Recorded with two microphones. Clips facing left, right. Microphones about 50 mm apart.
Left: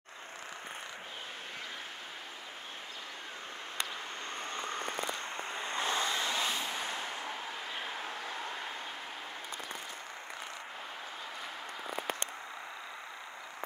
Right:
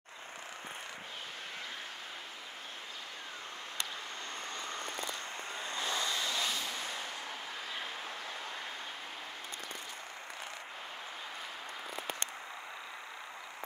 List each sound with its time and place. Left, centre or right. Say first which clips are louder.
5.6 s vehicle: left 3 dB; left; by 8.5 s centre